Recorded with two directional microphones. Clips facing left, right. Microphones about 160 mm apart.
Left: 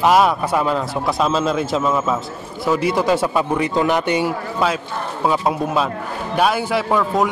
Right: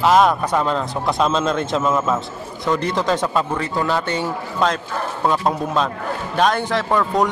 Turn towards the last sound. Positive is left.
turn(degrees=5)  # may be behind; listen again after turning